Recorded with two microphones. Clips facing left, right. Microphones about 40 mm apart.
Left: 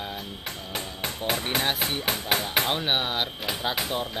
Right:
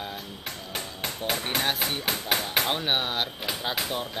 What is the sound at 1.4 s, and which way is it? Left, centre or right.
Speech, centre.